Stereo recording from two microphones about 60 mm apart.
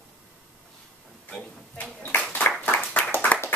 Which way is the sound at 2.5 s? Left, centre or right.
Left.